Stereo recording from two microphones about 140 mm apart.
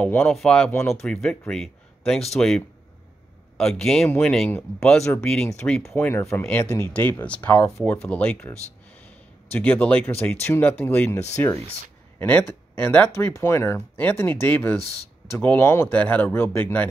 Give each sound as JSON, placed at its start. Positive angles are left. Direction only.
{"t": 0.0, "sound": "speech", "side_deg": 10}
{"t": 0.7, "sound": "speech", "side_deg": 20}
{"t": 1.0, "sound": "speech", "side_deg": 5}
{"t": 5.9, "sound": "speech", "side_deg": 15}